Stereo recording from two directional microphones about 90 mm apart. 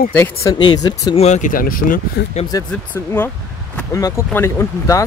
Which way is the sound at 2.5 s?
45° left (ahead or behind).